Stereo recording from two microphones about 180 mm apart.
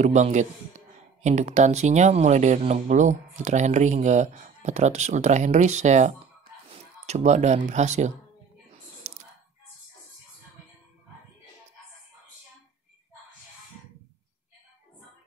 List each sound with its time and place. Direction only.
0.0 s a man's voice: 40° right (ahead or behind)